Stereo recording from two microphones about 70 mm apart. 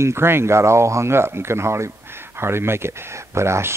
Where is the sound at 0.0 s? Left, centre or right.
Right.